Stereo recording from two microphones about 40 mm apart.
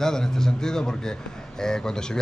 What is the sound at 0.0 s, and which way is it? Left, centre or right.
A man's voice, centre.